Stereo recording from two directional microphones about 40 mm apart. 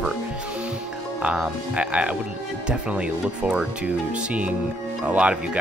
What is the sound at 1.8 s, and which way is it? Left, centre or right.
Speech, right.